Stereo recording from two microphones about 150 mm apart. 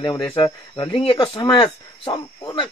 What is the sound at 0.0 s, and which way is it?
Speech, 30° left (ahead or behind).